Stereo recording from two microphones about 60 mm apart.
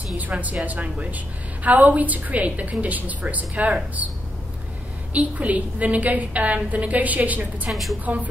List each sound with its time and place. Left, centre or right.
0.3 s a woman's voice: right
5.1 s a woman's voice: right
7.7 s a woman's voice: centre
8.0 s a woman's voice: right